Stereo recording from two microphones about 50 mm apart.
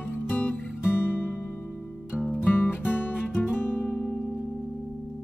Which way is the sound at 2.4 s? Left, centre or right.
Left.